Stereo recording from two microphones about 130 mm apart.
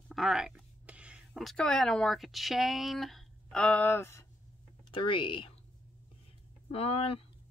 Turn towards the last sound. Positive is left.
turn(degrees=50)  # may be behind; listen again after turning